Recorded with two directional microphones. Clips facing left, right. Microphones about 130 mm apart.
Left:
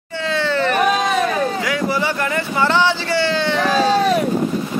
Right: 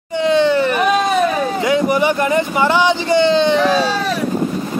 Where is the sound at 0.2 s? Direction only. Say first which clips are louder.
Right 6 dB; 20° right (ahead or behind).